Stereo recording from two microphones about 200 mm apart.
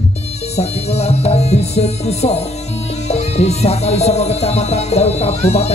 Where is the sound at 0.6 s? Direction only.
30° left (ahead or behind).